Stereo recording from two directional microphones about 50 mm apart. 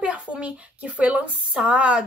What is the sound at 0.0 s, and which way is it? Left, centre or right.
A woman's voice, right.